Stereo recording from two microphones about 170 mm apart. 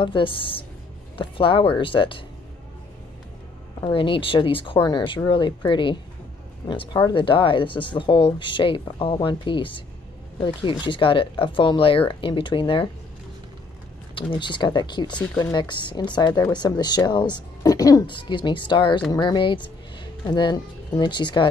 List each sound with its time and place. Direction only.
0.0 s a woman's voice: 30° left (ahead or behind)
3.8 s speech: 30° left (ahead or behind)
14.3 s speech: 30° left (ahead or behind)